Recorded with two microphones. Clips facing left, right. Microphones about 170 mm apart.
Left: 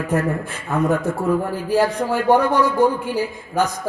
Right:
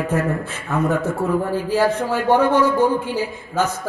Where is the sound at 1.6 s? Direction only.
15° left (ahead or behind).